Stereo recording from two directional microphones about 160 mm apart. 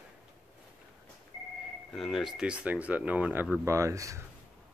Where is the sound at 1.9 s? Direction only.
Centre (ahead or behind).